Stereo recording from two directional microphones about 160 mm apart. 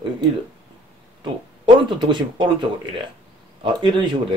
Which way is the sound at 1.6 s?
30° right (ahead or behind).